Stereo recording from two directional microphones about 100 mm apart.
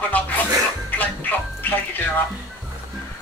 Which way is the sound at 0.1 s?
15° left (ahead or behind).